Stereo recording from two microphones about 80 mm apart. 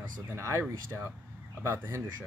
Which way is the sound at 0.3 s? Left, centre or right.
Right.